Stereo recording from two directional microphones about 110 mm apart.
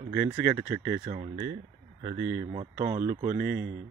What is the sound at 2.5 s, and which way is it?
Speech, 85° right.